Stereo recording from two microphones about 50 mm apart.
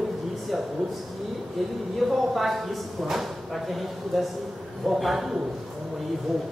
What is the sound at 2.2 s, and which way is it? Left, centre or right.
Speech, centre.